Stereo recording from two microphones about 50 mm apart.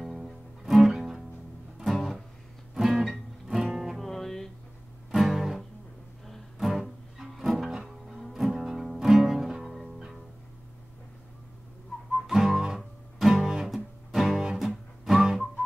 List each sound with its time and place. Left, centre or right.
0.0 s music: centre
2.7 s music: centre
4.0 s music: centre
5.1 s music: centre
12.1 s music: centre